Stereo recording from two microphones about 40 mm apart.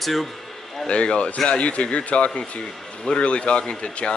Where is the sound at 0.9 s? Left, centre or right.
Left.